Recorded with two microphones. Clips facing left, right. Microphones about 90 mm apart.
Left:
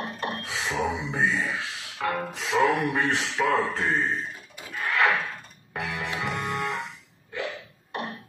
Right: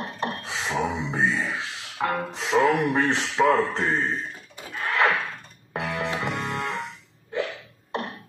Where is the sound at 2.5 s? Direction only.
15° right (ahead or behind).